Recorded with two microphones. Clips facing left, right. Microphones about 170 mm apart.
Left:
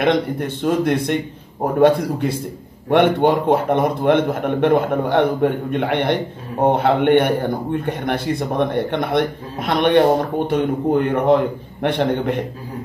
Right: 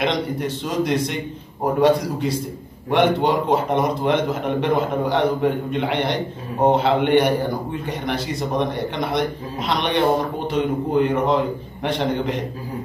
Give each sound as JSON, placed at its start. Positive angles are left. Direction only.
{"t": 0.0, "sound": "a man's voice", "side_deg": 55}